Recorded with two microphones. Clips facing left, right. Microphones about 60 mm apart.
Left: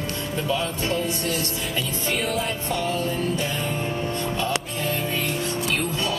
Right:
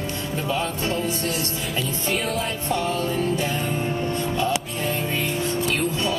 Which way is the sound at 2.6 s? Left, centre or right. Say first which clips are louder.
Right 4 dB; right.